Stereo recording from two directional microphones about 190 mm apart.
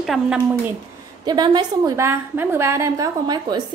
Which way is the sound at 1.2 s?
20° right (ahead or behind).